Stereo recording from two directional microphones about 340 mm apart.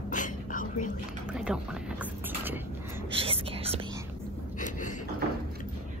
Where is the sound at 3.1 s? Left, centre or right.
Centre.